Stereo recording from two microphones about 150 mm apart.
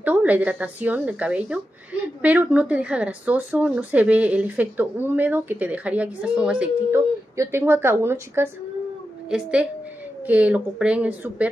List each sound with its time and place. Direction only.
0.0 s speech: 10° right (ahead or behind)